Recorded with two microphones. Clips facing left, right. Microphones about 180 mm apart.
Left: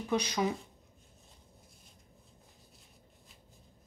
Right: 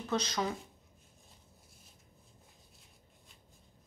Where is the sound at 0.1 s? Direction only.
10° left (ahead or behind).